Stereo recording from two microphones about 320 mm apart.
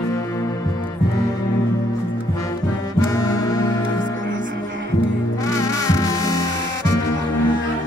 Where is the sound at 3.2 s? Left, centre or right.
Centre.